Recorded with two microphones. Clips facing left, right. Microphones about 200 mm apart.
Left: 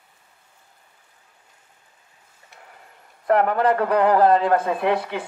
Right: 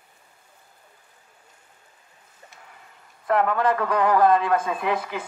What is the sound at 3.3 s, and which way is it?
A man's voice, 35° left (ahead or behind).